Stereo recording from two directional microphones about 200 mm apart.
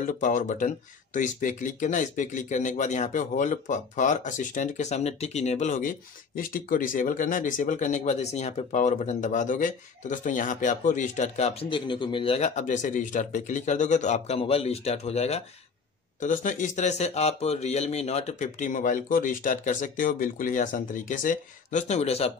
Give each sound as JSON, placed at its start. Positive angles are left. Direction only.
{"t": 0.0, "sound": "speech", "side_deg": 40}